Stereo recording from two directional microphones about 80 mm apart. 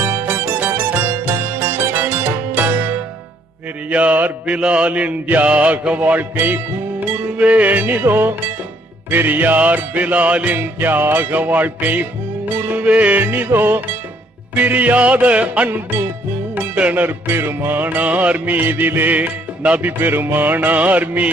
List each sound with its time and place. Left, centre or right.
0.0 s music: right
3.9 s mantra: centre
14.5 s music: centre
16.5 s mantra: centre